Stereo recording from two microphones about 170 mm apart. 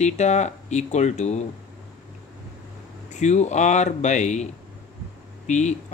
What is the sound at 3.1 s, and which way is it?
Speech, 40° left (ahead or behind).